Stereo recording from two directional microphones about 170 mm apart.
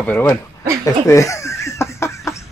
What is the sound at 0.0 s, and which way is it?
Speech, 10° left (ahead or behind).